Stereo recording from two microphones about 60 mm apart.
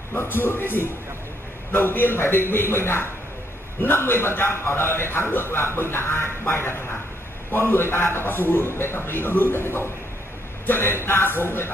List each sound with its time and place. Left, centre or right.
0.1 s a man's voice: left